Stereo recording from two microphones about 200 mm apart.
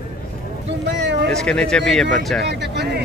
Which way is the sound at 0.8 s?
60° right (ahead or behind).